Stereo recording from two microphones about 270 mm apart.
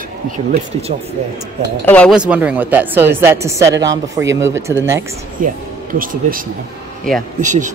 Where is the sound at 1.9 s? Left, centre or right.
Centre.